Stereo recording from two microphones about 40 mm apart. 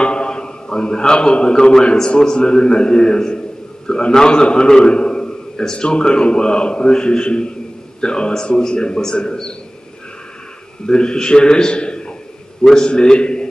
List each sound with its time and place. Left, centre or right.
0.0 s a sound: left
2.0 s a man's voice: centre
10.9 s a man's voice: left